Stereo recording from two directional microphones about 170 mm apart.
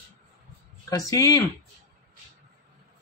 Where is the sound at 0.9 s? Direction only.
20° left (ahead or behind).